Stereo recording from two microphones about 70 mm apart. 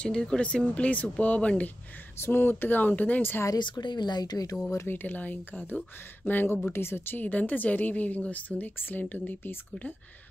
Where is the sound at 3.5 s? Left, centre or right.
Left.